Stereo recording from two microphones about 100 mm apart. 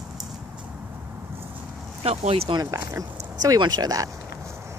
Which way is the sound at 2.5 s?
40° right (ahead or behind).